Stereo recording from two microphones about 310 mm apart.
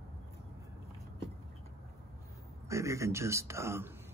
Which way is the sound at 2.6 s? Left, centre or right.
Centre.